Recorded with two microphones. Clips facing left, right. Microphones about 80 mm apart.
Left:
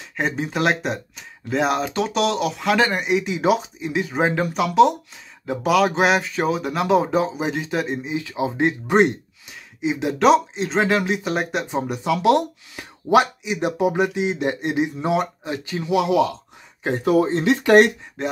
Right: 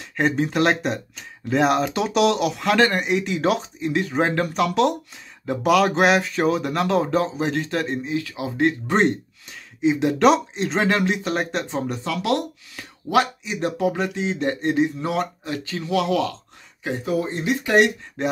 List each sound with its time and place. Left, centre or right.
0.1 s speech: centre
8.9 s speech: centre
17.0 s speech: left
18.2 s speech: centre